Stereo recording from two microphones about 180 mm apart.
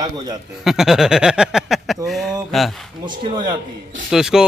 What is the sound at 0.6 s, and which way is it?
Speech, centre (ahead or behind).